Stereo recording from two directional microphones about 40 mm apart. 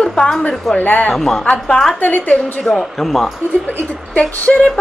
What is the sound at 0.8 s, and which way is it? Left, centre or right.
Speech, left.